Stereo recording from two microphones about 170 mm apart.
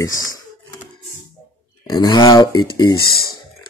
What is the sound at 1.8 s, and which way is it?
Speech, 25° left (ahead or behind).